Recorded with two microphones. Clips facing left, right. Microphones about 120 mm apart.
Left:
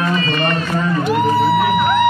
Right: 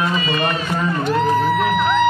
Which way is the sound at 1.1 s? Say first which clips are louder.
Left 2 dB; 10° left (ahead or behind).